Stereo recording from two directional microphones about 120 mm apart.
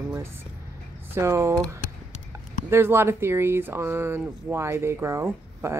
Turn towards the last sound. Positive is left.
turn(degrees=-25)  # may be behind; listen again after turning